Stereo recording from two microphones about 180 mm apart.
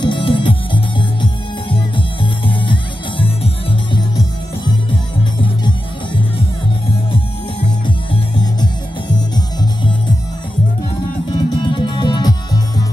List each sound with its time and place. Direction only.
0.0 s music: 30° left (ahead or behind)
7.8 s music: 25° left (ahead or behind)
11.3 s music: 25° left (ahead or behind)